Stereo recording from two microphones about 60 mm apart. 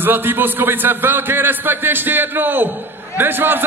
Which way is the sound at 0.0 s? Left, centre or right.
Right.